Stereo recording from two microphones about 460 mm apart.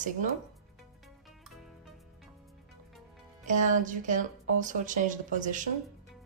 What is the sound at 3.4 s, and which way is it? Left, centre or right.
A woman's voice, centre.